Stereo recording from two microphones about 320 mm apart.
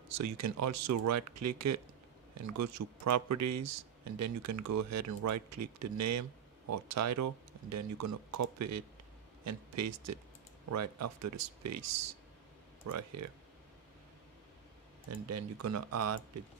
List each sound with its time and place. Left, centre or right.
0.1 s speech: right
15.0 s speech: right